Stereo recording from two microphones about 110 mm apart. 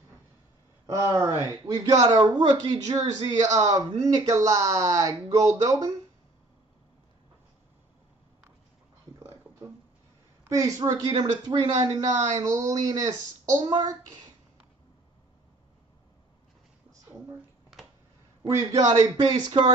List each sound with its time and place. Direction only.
0.8 s speech: 30° right (ahead or behind)
10.5 s speech: 30° right (ahead or behind)
13.6 s speech: 50° right (ahead or behind)
18.5 s speech: 30° right (ahead or behind)
19.1 s speech: 45° right (ahead or behind)